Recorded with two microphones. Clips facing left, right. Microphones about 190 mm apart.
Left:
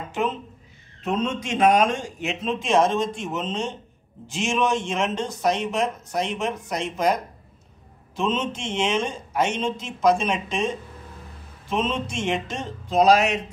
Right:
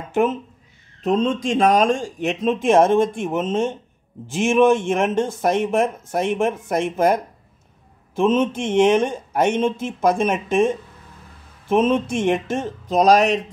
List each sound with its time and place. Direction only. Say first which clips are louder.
0.1 s speech: right 7 dB; 55° right (ahead or behind)
1.0 s speech: right 6 dB; 35° right (ahead or behind); by 7.2 s 55° right (ahead or behind)
8.2 s speech: right 7 dB; 55° right (ahead or behind)
11.7 s speech: right 8 dB; 55° right (ahead or behind)